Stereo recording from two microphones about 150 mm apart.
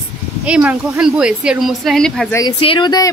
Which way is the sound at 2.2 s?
20° left (ahead or behind).